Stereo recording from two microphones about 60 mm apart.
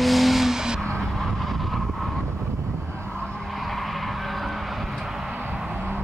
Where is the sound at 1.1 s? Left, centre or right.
Centre.